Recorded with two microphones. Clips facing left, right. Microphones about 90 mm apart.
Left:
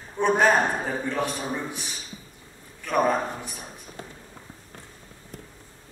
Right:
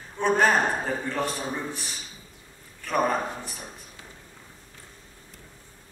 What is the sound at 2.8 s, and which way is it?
Speech, 10° left (ahead or behind).